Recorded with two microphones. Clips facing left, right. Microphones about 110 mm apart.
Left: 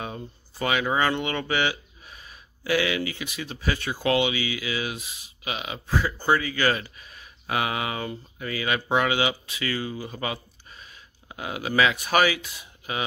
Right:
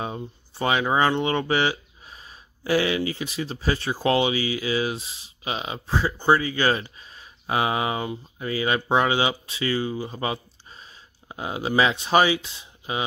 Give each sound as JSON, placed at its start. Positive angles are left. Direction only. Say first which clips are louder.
{"t": 0.0, "sound": "speech", "louder": "right 4 dB", "side_deg": -30}